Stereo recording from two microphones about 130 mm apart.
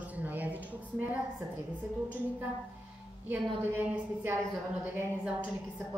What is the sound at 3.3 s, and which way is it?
A woman's voice, 15° right (ahead or behind).